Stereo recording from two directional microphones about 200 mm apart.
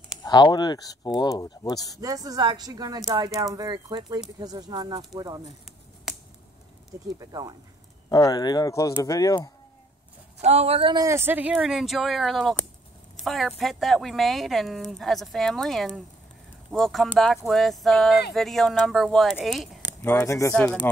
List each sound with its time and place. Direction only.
0.2 s speech: 20° left (ahead or behind)
2.0 s speech: 20° right (ahead or behind)
6.9 s speech: 20° right (ahead or behind)
8.1 s speech: 20° left (ahead or behind)
10.4 s speech: 30° right (ahead or behind); by 19.8 s centre (ahead or behind)
19.8 s speech: 15° left (ahead or behind)